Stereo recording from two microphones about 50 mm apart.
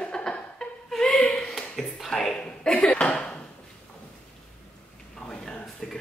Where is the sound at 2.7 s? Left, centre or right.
Left.